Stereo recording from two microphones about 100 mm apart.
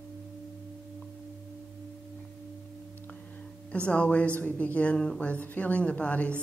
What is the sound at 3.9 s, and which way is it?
A woman's voice, 15° left (ahead or behind).